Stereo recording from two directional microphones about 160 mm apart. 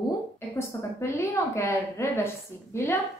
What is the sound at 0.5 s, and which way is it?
A woman's voice, 15° left (ahead or behind).